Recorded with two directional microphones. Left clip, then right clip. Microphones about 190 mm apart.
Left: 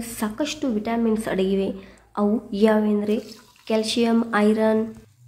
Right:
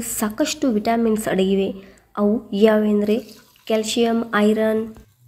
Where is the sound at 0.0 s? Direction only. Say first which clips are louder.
Right 4 dB; 20° right (ahead or behind).